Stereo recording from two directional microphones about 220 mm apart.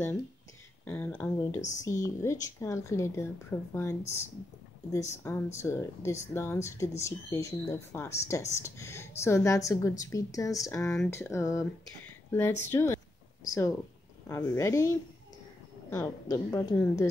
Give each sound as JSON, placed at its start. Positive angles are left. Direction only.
{"t": 0.8, "sound": "speech", "side_deg": 10}
{"t": 4.9, "sound": "speech", "side_deg": 15}